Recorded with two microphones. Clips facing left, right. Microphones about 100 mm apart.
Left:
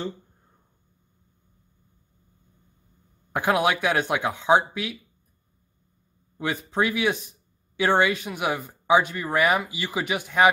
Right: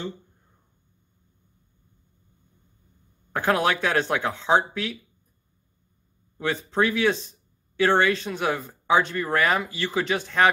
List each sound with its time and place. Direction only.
3.3 s speech: 15° left (ahead or behind)
6.3 s speech: 15° left (ahead or behind)